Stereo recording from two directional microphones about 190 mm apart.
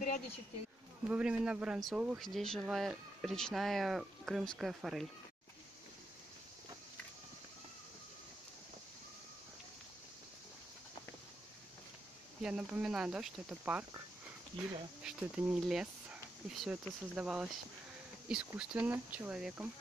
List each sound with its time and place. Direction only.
0.0 s a sound: 40° left (ahead or behind)
1.0 s speech: 5° right (ahead or behind)
12.4 s speech: 5° right (ahead or behind)